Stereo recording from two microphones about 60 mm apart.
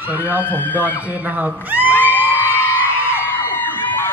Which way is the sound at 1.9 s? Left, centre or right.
Left.